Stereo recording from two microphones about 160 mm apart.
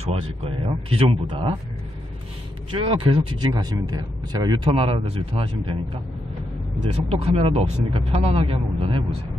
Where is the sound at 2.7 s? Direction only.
35° right (ahead or behind).